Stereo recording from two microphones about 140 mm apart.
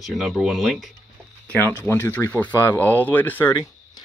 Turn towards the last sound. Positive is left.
turn(degrees=15)  # may be behind; listen again after turning